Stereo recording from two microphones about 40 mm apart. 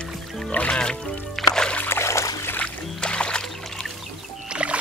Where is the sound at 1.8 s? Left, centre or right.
Left.